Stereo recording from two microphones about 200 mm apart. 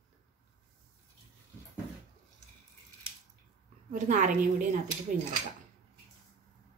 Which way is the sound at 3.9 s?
40° right (ahead or behind).